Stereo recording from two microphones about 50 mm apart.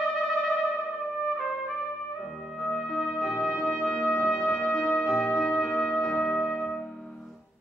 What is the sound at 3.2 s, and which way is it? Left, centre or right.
Music, centre.